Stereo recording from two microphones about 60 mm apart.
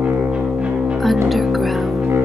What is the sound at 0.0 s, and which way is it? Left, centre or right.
Music, right.